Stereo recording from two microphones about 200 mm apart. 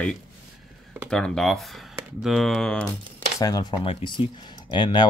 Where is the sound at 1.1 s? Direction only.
5° left (ahead or behind).